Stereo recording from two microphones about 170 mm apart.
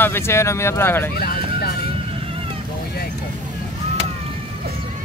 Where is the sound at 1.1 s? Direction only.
65° left (ahead or behind).